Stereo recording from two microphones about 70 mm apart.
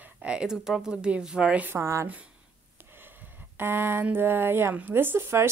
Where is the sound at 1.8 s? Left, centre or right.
Right.